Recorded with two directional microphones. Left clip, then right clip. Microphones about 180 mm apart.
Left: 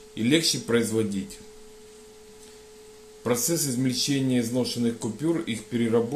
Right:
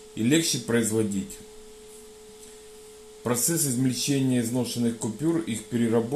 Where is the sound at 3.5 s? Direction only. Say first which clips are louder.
Even; 35° right (ahead or behind).